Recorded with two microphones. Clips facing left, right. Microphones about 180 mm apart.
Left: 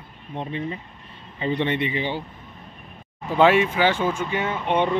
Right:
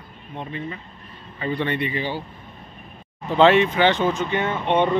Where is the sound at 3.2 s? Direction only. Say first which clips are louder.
Right 2 dB; 10° left (ahead or behind).